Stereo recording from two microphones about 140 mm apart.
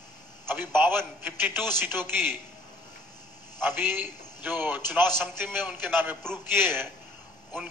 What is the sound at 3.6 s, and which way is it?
A man's voice, 15° right (ahead or behind).